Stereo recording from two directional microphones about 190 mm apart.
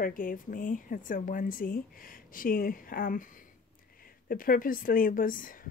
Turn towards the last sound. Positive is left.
turn(degrees=45)  # may be behind; listen again after turning